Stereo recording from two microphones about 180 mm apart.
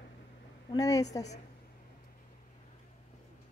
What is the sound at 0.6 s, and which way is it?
Speech, 20° left (ahead or behind).